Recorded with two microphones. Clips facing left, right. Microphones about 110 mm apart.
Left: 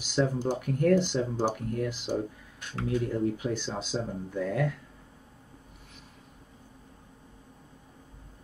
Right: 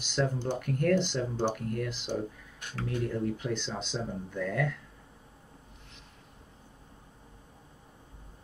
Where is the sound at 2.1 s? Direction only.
35° left (ahead or behind).